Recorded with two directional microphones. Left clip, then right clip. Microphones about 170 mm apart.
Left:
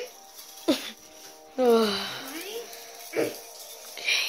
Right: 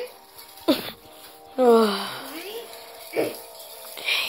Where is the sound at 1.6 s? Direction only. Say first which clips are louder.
Right 4 dB; centre (ahead or behind).